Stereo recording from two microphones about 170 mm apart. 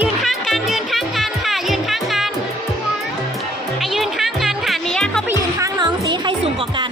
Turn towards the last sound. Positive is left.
turn(degrees=-25)  # may be behind; listen again after turning